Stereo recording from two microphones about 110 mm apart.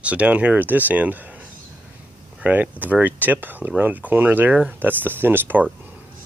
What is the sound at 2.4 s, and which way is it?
Speech, 15° right (ahead or behind).